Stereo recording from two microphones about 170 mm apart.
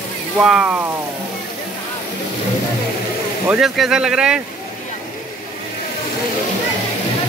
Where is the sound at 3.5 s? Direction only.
Centre (ahead or behind).